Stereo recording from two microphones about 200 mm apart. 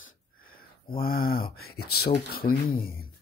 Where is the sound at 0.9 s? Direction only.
45° left (ahead or behind).